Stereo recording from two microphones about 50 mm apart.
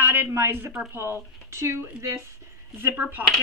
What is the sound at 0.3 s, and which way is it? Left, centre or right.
Speech, right.